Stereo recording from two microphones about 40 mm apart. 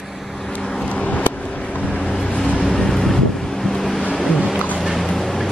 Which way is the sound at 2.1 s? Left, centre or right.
Centre.